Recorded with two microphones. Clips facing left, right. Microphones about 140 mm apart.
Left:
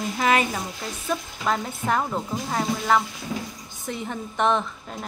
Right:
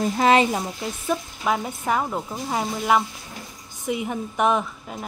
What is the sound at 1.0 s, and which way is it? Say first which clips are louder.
A woman's voice: right 1 dB; 10° right (ahead or behind).